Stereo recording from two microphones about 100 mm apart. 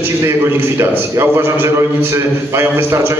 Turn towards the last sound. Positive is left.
turn(degrees=-25)  # may be behind; listen again after turning